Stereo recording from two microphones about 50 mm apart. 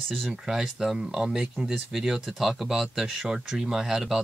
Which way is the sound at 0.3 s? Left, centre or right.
Centre.